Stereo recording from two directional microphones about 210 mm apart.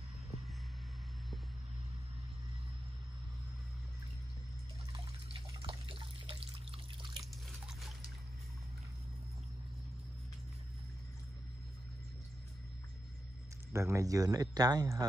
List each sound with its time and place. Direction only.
4.9 s water: 20° right (ahead or behind)
7.2 s a sound: centre (ahead or behind)
13.7 s speech: 15° right (ahead or behind)